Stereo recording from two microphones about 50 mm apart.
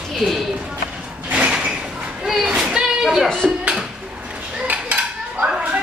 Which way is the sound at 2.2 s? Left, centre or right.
Centre.